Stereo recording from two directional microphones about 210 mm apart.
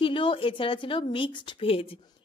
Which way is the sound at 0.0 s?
25° left (ahead or behind).